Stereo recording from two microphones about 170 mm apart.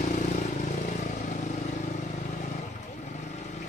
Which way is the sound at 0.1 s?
45° left (ahead or behind).